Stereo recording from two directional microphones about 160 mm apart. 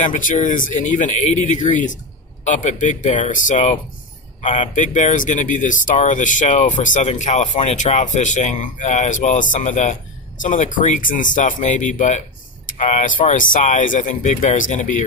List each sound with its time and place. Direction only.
0.0 s speech: 55° left (ahead or behind)
4.7 s speech: 50° left (ahead or behind)